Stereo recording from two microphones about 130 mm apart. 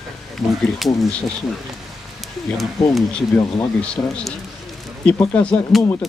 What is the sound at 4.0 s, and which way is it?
Speech, 15° left (ahead or behind).